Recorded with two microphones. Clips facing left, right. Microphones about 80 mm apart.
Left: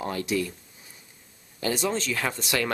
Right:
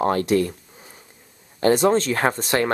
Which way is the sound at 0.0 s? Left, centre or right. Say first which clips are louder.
Right 9 dB; right.